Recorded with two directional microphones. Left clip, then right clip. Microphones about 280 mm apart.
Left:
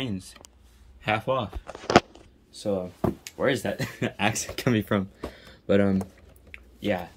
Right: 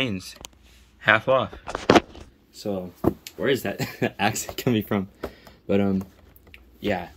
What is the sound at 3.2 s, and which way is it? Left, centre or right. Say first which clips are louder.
Speech: right 1 dB; centre.